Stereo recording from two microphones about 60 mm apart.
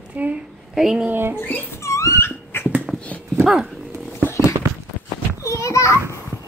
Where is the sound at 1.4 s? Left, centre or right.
Left.